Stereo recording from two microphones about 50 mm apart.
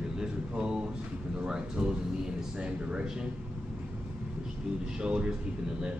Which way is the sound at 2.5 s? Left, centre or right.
Centre.